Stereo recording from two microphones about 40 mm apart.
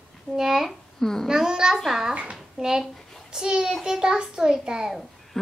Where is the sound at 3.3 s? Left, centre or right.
Centre.